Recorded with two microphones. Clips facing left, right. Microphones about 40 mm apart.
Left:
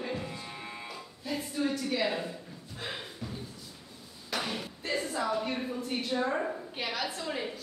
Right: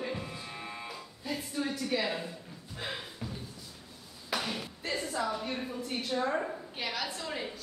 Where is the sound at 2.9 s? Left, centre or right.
Centre.